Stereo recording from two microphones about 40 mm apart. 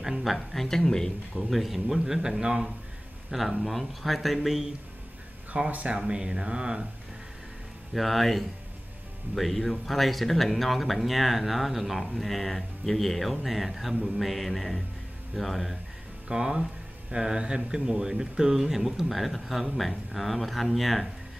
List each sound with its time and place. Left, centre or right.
0.0 s speech: centre
1.5 s speech: centre
3.3 s speech: centre
5.7 s speech: right
5.9 s speech: right
7.9 s speech: centre
16.3 s speech: centre